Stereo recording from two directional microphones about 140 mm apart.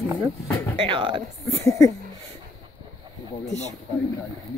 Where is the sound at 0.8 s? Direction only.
35° right (ahead or behind).